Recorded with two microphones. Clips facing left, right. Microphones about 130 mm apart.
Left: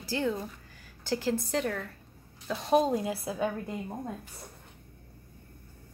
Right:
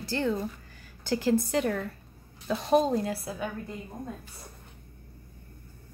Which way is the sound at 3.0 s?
15° left (ahead or behind).